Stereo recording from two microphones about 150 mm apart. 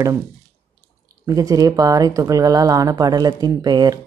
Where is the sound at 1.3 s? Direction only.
25° right (ahead or behind).